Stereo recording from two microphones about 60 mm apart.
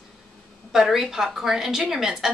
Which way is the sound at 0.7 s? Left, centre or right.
Centre.